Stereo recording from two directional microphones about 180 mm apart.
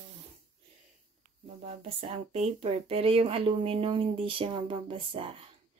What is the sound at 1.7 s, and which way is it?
Speech, 30° right (ahead or behind).